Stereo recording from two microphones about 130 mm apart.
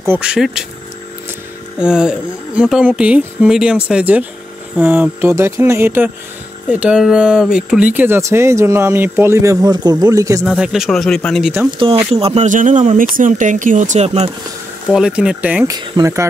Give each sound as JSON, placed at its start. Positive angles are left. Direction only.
{"t": 0.0, "sound": "speech", "side_deg": -15}
{"t": 0.3, "sound": "speech", "side_deg": -5}
{"t": 1.8, "sound": "a sound", "side_deg": -5}
{"t": 6.7, "sound": "speech", "side_deg": -10}
{"t": 10.4, "sound": "speech", "side_deg": 0}
{"t": 12.1, "sound": "speech", "side_deg": -50}
{"t": 12.4, "sound": "speech", "side_deg": -80}
{"t": 14.9, "sound": "a sound", "side_deg": -5}
{"t": 15.6, "sound": "speech", "side_deg": -30}